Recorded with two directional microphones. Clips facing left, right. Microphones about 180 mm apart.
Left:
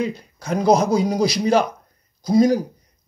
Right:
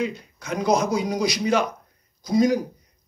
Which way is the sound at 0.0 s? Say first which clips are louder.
Left 2 dB; 35° left (ahead or behind).